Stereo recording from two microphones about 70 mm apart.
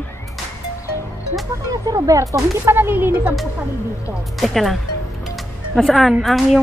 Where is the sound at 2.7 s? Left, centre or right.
Right.